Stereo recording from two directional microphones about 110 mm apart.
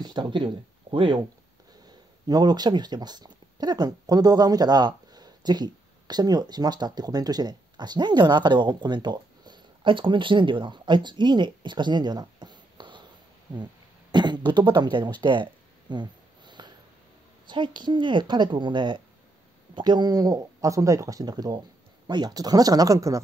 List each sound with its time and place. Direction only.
0.0 s speech: 40° right (ahead or behind)
1.9 s speech: 35° right (ahead or behind)
14.1 s throat clearing: 40° right (ahead or behind)
17.5 s a woman's voice: 45° right (ahead or behind)